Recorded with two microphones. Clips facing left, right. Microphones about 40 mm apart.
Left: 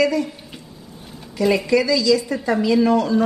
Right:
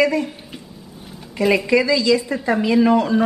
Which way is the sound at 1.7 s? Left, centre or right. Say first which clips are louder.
Even; right.